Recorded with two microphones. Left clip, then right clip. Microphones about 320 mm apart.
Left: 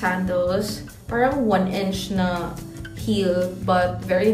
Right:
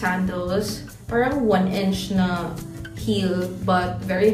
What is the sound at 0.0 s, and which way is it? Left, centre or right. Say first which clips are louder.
A woman's voice: left 3 dB; centre.